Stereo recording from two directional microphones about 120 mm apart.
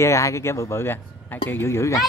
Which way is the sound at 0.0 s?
25° left (ahead or behind).